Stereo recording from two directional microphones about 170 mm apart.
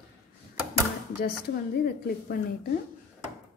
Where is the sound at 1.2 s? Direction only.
60° left (ahead or behind).